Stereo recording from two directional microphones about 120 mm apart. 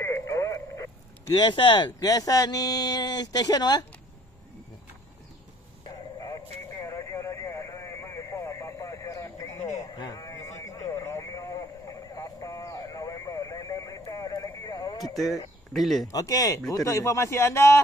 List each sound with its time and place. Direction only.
0.0 s radio: 25° left (ahead or behind)
1.3 s speech: 40° left (ahead or behind)
5.9 s a sound: 35° left (ahead or behind)
6.7 s radio: 25° left (ahead or behind)
9.8 s a sound: 35° left (ahead or behind)
15.7 s speech: centre (ahead or behind)
16.1 s a man's voice: 30° left (ahead or behind)